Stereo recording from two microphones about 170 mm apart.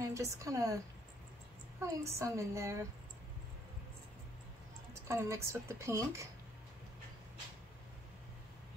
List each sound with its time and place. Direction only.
0.0 s speech: 20° right (ahead or behind)
1.8 s speech: 15° right (ahead or behind)
5.0 s speech: 15° right (ahead or behind)